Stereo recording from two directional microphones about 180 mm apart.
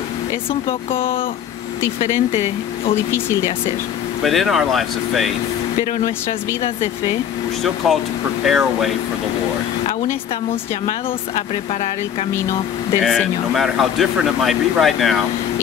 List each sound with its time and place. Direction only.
0.5 s speech: 30° left (ahead or behind)
2.9 s speech: 15° left (ahead or behind)
4.2 s speech: centre (ahead or behind)
5.9 s speech: 35° left (ahead or behind)
7.6 s speech: centre (ahead or behind)
11.3 s speech: 40° left (ahead or behind)
13.0 s speech: centre (ahead or behind)